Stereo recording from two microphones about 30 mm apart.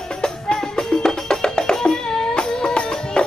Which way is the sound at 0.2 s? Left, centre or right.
Centre.